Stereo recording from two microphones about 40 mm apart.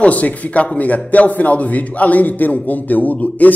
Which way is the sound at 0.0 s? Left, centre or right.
Left.